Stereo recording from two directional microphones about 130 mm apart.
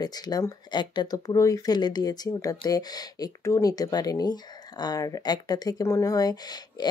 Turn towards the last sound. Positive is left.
turn(degrees=30)  # may be behind; listen again after turning